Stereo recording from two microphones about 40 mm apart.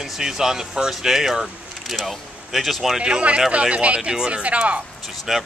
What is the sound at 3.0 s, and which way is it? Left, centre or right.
Speech, right.